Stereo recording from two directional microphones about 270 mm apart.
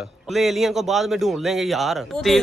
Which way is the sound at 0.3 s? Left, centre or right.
Centre.